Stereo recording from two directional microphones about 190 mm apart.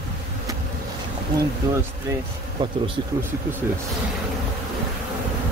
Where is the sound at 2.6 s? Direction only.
25° right (ahead or behind).